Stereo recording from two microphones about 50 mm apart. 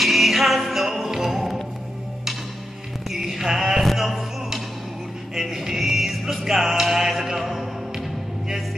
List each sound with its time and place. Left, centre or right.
0.0 s music: centre
3.1 s music: centre